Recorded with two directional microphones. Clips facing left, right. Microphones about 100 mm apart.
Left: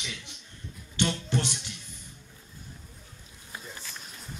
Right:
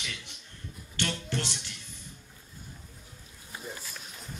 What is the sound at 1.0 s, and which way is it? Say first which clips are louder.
Music: left 4 dB; 15° left (ahead or behind).